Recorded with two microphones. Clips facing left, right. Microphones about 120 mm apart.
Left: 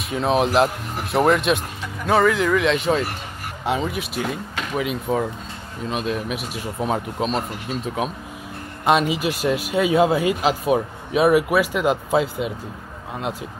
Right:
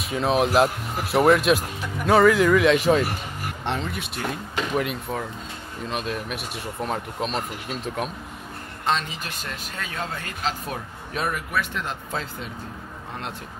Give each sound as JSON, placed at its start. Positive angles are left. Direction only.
{"t": 0.0, "sound": "speech", "side_deg": 0}